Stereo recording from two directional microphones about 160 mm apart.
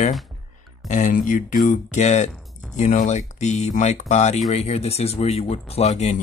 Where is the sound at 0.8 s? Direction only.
50° left (ahead or behind).